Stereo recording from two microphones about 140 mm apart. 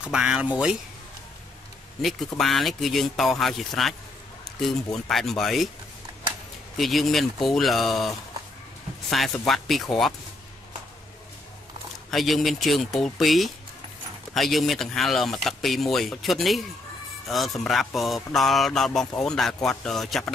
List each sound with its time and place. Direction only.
0.0 s speech: 5° right (ahead or behind)
2.0 s speech: centre (ahead or behind)
6.8 s speech: centre (ahead or behind)
9.1 s speech: centre (ahead or behind)
12.1 s speech: centre (ahead or behind)